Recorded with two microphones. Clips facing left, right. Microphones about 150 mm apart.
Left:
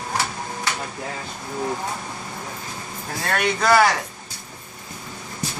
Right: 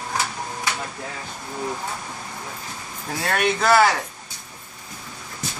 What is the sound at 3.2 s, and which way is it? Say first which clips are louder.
Speech: right 1 dB; 5° right (ahead or behind).